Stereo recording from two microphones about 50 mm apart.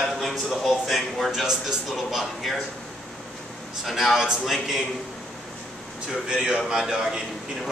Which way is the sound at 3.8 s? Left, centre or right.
Centre.